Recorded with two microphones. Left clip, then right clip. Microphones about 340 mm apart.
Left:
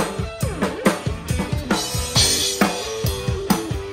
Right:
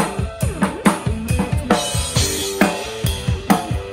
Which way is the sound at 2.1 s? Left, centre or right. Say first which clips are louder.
Left 6 dB; centre.